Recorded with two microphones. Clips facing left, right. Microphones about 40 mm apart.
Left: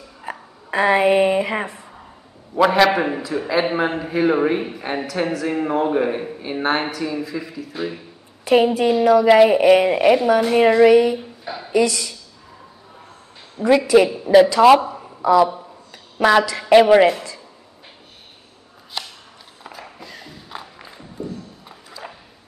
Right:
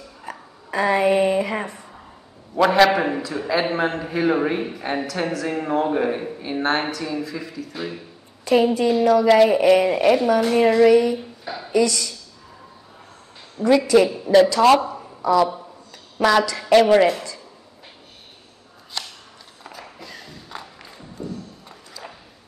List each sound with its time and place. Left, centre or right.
0.2 s a woman's voice: left
1.7 s a sound: centre
2.5 s a man's voice: centre
8.5 s a woman's voice: left
11.1 s a sound: centre
11.7 s a woman's voice: centre
13.6 s a woman's voice: centre
16.2 s a man's voice: centre
19.0 s a sound: centre